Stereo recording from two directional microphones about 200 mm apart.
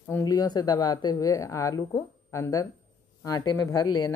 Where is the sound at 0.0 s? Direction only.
15° left (ahead or behind).